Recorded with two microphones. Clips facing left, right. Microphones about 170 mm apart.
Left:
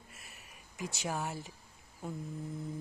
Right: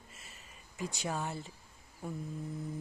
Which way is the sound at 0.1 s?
65° left (ahead or behind).